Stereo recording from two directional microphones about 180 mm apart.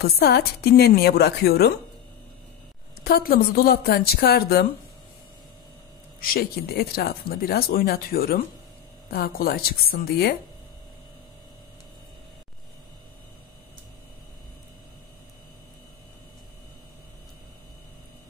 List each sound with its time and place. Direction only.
0.0 s speech: 60° left (ahead or behind)
3.0 s speech: 55° left (ahead or behind)
6.2 s speech: 55° left (ahead or behind)